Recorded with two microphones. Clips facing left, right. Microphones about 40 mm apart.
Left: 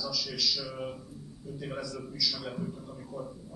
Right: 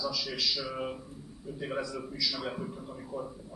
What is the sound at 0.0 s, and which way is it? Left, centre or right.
A man's voice, centre.